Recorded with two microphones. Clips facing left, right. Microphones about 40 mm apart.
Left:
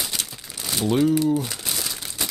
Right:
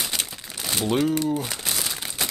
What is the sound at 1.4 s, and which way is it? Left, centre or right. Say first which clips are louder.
Crumpling: even; centre.